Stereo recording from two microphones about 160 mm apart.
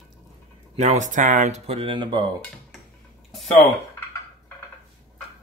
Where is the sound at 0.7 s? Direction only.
45° right (ahead or behind); by 2.2 s 30° right (ahead or behind).